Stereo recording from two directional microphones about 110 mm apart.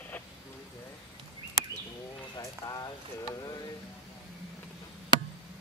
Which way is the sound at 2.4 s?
35° left (ahead or behind).